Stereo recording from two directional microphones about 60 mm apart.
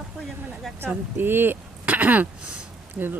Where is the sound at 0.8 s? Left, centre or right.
Right.